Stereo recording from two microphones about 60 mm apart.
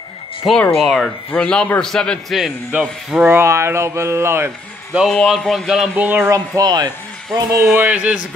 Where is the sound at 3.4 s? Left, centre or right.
Right.